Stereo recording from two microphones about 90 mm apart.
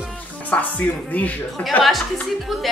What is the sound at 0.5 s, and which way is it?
Speech, 15° left (ahead or behind).